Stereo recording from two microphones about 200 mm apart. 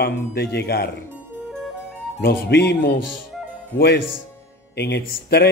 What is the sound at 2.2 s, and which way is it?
A man's voice, 55° left (ahead or behind).